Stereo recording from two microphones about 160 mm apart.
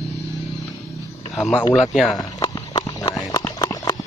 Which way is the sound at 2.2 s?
25° left (ahead or behind).